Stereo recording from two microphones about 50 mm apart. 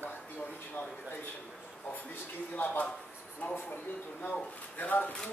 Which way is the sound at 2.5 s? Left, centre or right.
Left.